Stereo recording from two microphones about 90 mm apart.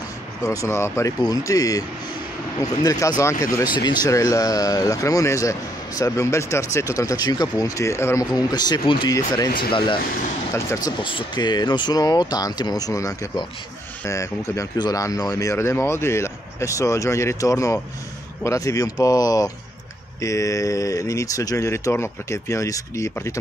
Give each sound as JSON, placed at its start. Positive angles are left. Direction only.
{"t": 0.4, "sound": "speech", "side_deg": 40}
{"t": 1.2, "sound": "speech", "side_deg": 40}
{"t": 3.7, "sound": "speech", "side_deg": 55}
{"t": 4.1, "sound": "speech", "side_deg": 40}
{"t": 8.2, "sound": "speech", "side_deg": 45}
{"t": 10.5, "sound": "speech", "side_deg": 35}
{"t": 11.0, "sound": "speech", "side_deg": 65}
{"t": 12.0, "sound": "speech", "side_deg": 45}